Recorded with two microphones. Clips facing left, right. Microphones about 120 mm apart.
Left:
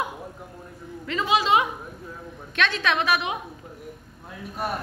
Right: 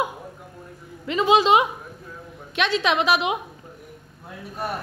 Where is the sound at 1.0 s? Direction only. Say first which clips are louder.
Right 5 dB; 20° right (ahead or behind).